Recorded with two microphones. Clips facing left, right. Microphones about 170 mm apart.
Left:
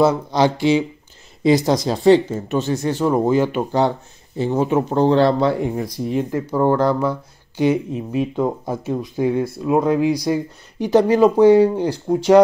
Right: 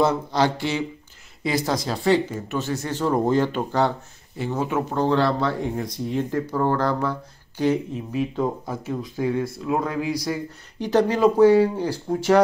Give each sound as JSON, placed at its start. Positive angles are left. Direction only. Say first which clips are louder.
{"t": 0.0, "sound": "speech", "louder": "left 4 dB", "side_deg": 15}
{"t": 4.4, "sound": "speech", "louder": "left 6 dB", "side_deg": 25}
{"t": 5.8, "sound": "speech", "louder": "left 4 dB", "side_deg": 5}